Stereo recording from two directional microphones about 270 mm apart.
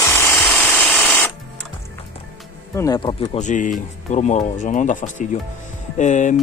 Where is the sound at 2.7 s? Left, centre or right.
Centre.